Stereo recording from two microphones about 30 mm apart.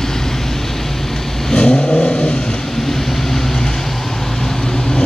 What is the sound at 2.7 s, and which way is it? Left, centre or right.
Vehicle, centre.